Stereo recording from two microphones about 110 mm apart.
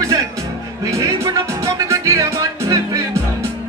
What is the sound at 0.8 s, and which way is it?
Music, 30° right (ahead or behind).